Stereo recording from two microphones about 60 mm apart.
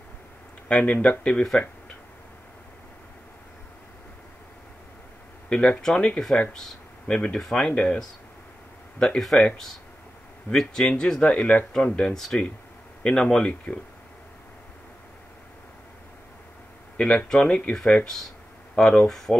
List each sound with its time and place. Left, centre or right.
0.7 s speech: centre
5.5 s speech: centre
7.3 s speech: centre
9.0 s speech: centre
10.5 s speech: centre
17.0 s speech: centre